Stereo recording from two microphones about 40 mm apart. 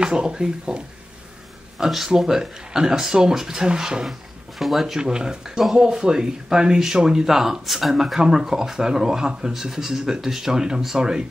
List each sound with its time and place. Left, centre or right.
0.0 s speech: centre
1.8 s speech: centre
4.6 s speech: centre
4.9 s speech: centre